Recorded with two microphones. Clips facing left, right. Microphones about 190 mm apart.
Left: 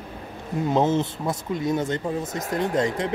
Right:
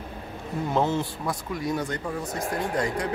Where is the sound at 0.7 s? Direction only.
20° left (ahead or behind).